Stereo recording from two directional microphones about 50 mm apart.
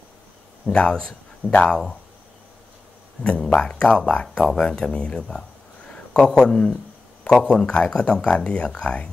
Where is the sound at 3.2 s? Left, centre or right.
Centre.